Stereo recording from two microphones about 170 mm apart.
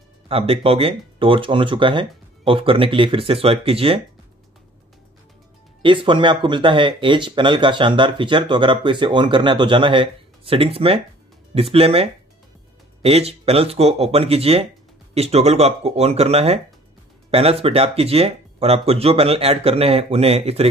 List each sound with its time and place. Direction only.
0.3 s speech: 35° right (ahead or behind)
5.8 s speech: 30° right (ahead or behind)